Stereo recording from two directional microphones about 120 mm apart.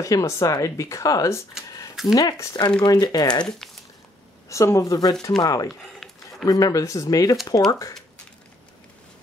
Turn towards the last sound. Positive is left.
turn(degrees=30)  # may be behind; listen again after turning